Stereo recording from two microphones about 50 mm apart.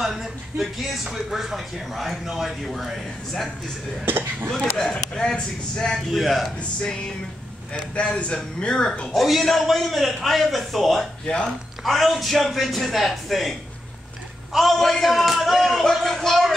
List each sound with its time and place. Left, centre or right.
0.0 s speech: centre
4.0 s speech: right
4.7 s a man's voice: centre
7.7 s a man's voice: left
9.1 s a man's voice: centre